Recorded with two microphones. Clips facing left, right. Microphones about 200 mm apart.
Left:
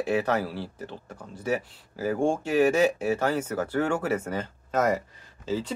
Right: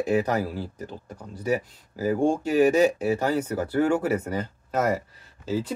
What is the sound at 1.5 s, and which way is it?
Speech, 15° right (ahead or behind).